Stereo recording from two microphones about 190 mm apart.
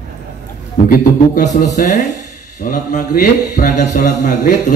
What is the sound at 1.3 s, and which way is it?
Speech, 40° left (ahead or behind).